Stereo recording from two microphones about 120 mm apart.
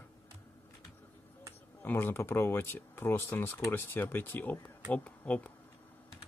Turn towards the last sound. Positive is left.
turn(degrees=10)  # may be behind; listen again after turning